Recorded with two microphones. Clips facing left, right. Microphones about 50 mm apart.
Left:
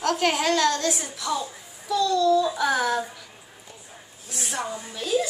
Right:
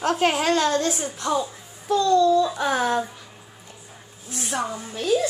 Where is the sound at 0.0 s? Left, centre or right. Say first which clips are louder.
Right 2 dB; right.